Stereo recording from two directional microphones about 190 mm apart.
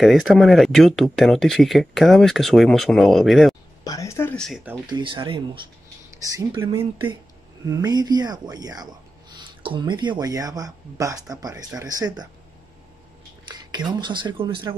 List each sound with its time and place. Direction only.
0.0 s speech: centre (ahead or behind)
3.8 s speech: 15° left (ahead or behind)
4.8 s speech: 25° right (ahead or behind)
13.5 s speech: 20° right (ahead or behind)